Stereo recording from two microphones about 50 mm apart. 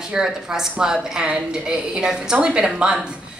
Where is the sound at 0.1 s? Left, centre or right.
Centre.